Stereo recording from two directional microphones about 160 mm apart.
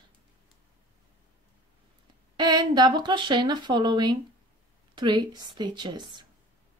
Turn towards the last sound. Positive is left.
turn(degrees=-30)  # may be behind; listen again after turning